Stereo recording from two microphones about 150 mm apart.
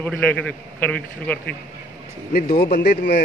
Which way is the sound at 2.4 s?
80° left.